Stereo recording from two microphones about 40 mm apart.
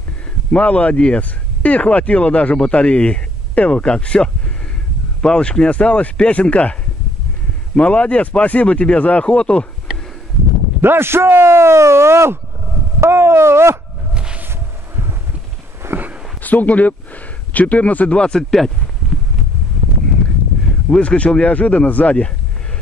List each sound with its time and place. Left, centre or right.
0.5 s speech: left
5.7 s speech: left
7.8 s speech: left
10.8 s speech: right
14.1 s a sound: right
14.5 s a sound: right
16.4 s speech: left
18.3 s speech: centre
21.0 s speech: left